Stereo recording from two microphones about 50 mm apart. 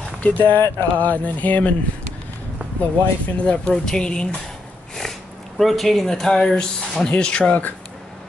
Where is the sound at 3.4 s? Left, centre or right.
Left.